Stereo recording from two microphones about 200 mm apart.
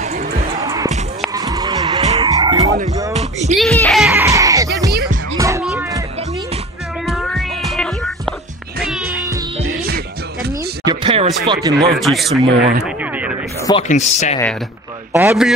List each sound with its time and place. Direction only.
0.6 s basketball bounce: 20° right (ahead or behind)
1.3 s skidding: 20° right (ahead or behind)
3.1 s music: 30° right (ahead or behind)
3.5 s a sound: centre (ahead or behind)
4.1 s music: 15° right (ahead or behind)
5.6 s music: 5° right (ahead or behind)
7.1 s cat: centre (ahead or behind)
9.7 s music: 50° right (ahead or behind)
10.9 s a sound: 25° right (ahead or behind)
11.8 s speech: centre (ahead or behind)
12.8 s a sound: 5° right (ahead or behind)
13.8 s speech: 35° left (ahead or behind)
15.1 s a man's voice: 5° right (ahead or behind)